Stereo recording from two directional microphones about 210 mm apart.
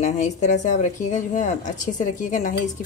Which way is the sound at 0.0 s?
35° left (ahead or behind).